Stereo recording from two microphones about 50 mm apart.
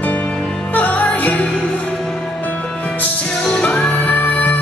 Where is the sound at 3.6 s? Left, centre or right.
Left.